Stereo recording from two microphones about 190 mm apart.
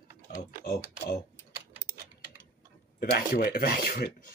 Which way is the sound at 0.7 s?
55° left (ahead or behind).